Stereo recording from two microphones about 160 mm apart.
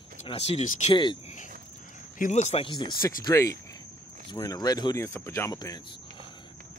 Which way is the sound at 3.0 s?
20° left (ahead or behind).